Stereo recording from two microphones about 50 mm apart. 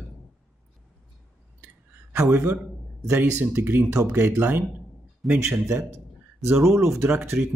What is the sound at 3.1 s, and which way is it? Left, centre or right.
Speech, right.